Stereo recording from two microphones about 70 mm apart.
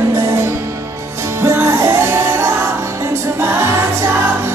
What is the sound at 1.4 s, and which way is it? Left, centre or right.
Music, right.